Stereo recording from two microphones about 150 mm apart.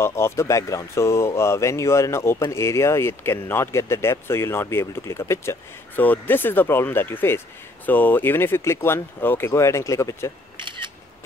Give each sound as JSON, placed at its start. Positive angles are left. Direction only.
{"t": 0.0, "sound": "speech", "side_deg": 15}